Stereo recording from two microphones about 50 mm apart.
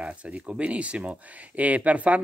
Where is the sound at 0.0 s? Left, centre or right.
Right.